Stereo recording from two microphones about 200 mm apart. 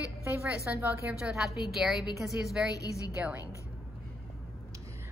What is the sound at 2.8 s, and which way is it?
Speech, 15° left (ahead or behind).